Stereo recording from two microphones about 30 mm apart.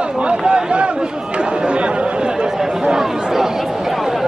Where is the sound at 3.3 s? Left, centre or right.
Centre.